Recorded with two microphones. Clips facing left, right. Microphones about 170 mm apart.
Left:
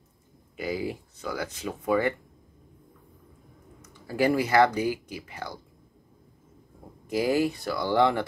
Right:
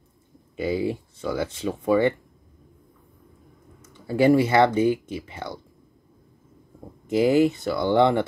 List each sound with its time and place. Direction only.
0.6 s speech: 25° right (ahead or behind)
3.8 s speech: 25° right (ahead or behind)
7.1 s speech: 20° right (ahead or behind)